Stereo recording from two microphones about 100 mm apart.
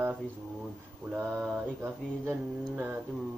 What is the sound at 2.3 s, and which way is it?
Speech, 15° right (ahead or behind).